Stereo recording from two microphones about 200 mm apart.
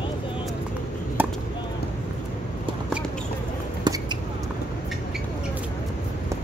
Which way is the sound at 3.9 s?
20° right (ahead or behind).